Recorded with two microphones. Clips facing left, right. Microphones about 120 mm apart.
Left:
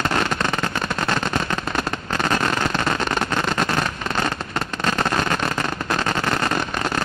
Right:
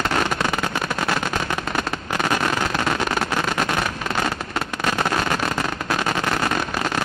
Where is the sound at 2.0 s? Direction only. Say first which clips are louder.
Even; 5° right (ahead or behind).